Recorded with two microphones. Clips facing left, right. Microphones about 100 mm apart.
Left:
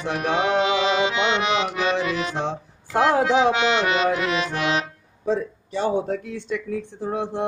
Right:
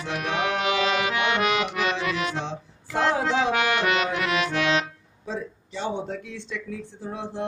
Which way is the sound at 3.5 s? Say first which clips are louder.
Left 2 dB; 20° left (ahead or behind).